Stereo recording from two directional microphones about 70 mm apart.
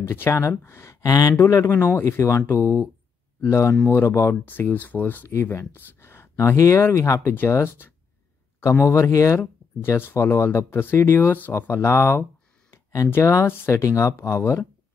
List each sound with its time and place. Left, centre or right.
0.1 s speech: left
1.0 s speech: left
1.8 s speech: left
4.5 s speech: left
5.3 s speech: left
9.4 s speech: left
10.1 s speech: left
13.1 s speech: left